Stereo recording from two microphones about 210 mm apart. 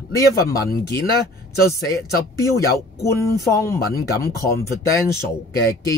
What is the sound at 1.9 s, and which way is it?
Speech, 15° left (ahead or behind).